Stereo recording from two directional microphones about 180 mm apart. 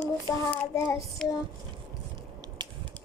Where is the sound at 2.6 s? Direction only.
25° right (ahead or behind).